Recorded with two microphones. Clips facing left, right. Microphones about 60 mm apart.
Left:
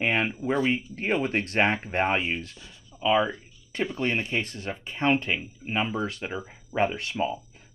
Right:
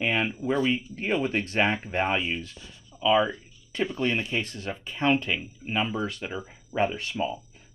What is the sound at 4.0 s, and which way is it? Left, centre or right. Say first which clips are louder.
Speech: left 1 dB; left.